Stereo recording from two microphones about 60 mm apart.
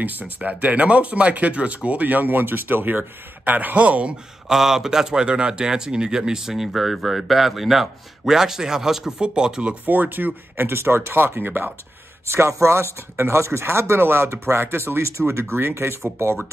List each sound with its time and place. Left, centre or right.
0.0 s speech: right
4.5 s a man's voice: centre
9.8 s speech: right
12.3 s speech: right